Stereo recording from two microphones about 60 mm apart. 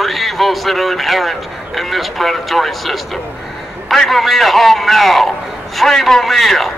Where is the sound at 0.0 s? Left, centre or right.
Centre.